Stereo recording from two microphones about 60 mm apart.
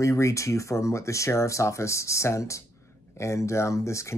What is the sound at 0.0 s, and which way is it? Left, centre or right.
Speech, left.